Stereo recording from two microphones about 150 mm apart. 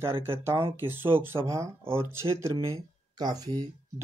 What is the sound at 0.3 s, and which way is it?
Speech, 15° right (ahead or behind).